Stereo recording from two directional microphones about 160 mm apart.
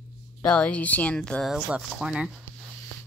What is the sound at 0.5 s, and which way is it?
Speech, 10° left (ahead or behind).